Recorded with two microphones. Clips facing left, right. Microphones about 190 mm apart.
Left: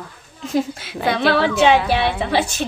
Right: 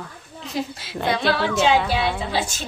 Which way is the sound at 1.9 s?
65° left (ahead or behind).